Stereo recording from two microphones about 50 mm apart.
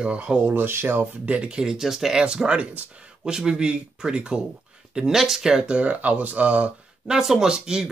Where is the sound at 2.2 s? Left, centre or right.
Centre.